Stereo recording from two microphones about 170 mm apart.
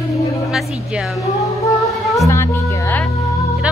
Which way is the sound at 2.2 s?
15° left (ahead or behind).